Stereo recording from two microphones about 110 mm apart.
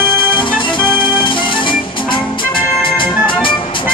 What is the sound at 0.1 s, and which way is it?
Music, 45° left (ahead or behind).